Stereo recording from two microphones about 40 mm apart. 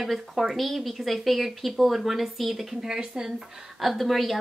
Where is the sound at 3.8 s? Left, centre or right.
Centre.